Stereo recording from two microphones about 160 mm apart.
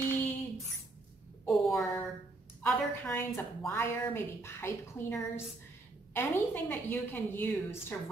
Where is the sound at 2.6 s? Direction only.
10° left (ahead or behind).